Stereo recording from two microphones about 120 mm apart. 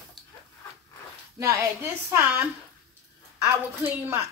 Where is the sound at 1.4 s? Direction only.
25° right (ahead or behind).